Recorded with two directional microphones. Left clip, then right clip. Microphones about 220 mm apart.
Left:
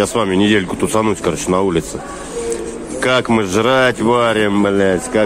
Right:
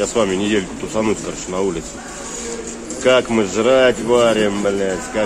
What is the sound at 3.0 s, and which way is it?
Speech, 35° left (ahead or behind).